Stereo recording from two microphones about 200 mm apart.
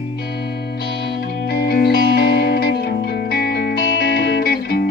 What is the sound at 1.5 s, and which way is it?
Music, 50° left (ahead or behind).